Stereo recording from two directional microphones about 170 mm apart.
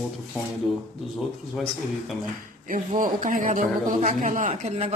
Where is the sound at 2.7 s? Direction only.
50° right (ahead or behind).